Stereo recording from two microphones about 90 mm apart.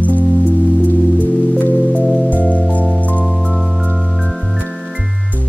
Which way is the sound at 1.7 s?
15° left (ahead or behind).